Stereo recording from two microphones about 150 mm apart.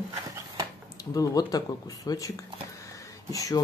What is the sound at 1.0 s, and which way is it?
Speech, 25° left (ahead or behind).